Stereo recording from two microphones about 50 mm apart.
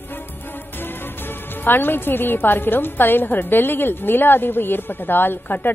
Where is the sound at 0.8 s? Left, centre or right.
Left.